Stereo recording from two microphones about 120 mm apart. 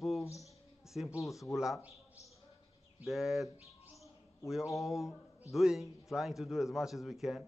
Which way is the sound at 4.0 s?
Centre (ahead or behind).